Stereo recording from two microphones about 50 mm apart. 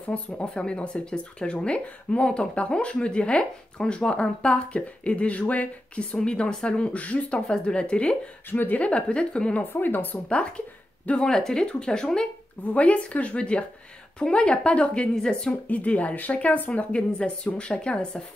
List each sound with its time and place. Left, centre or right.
0.1 s speech: left
8.5 s speech: left
8.7 s speech: left
9.7 s speech: left
11.1 s speech: centre
12.7 s speech: left